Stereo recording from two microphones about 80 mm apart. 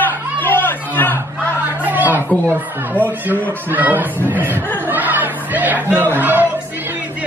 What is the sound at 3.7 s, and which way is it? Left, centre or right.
Speech, right.